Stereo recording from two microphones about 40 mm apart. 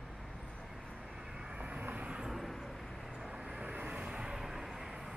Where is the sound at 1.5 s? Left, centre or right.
Right.